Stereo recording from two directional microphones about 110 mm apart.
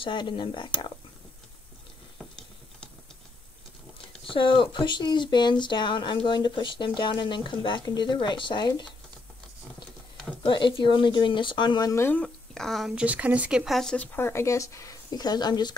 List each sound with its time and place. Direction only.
0.0 s speech: 50° left (ahead or behind)
2.1 s water tap: 5° left (ahead or behind)
4.3 s speech: 50° left (ahead or behind)
10.4 s speech: 50° left (ahead or behind)
11.9 s speech: 20° left (ahead or behind)
12.2 s a woman's voice: 5° left (ahead or behind)
13.0 s speech: 10° right (ahead or behind)
13.7 s speech: 5° left (ahead or behind)
14.1 s speech: 20° left (ahead or behind); by 15.7 s 40° left (ahead or behind)